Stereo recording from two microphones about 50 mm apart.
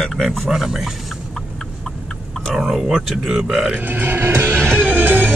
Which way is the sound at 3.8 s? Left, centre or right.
Right.